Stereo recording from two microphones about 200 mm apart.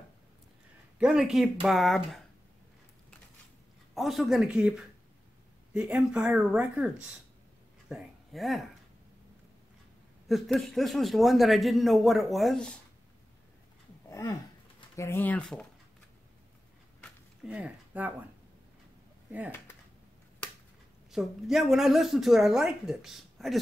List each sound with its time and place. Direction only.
0.9 s speech: 5° right (ahead or behind)
3.9 s speech: centre (ahead or behind)
10.2 s speech: centre (ahead or behind)
14.0 s a sound: 15° left (ahead or behind)
15.0 s speech: 10° left (ahead or behind)
17.4 s speech: 5° right (ahead or behind)
21.1 s speech: centre (ahead or behind)